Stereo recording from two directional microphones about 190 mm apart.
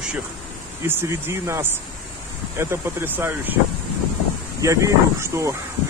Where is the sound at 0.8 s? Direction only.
10° right (ahead or behind).